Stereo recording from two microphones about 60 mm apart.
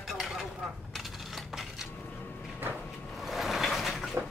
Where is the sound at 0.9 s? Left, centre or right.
Centre.